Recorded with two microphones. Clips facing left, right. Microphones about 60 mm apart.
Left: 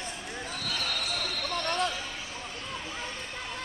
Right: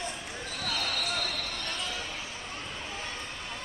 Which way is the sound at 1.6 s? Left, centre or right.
Left.